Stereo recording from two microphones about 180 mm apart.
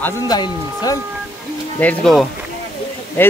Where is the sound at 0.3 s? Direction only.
20° left (ahead or behind).